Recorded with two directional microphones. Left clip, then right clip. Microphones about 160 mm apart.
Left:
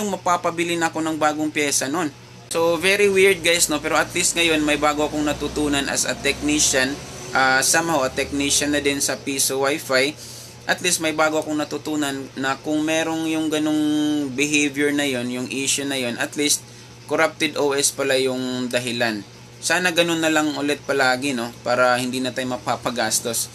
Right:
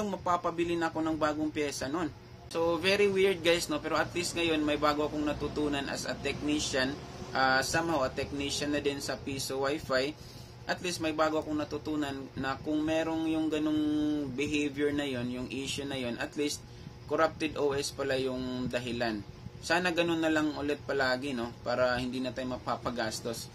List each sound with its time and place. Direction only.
0.0 s a man's voice: 20° left (ahead or behind)